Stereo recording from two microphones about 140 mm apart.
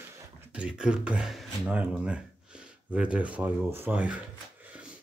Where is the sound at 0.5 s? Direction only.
5° right (ahead or behind).